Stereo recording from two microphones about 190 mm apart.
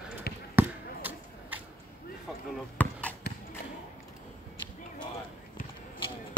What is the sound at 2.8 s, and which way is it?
Basketball bounce, 10° left (ahead or behind).